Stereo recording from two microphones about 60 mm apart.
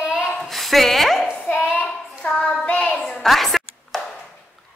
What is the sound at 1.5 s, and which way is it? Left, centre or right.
Child singing, left.